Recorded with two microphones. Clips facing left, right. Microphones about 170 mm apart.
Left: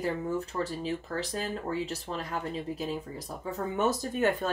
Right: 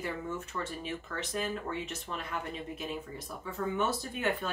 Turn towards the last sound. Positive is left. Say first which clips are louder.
# left 5 dB
turn(degrees=45)  # may be behind; listen again after turning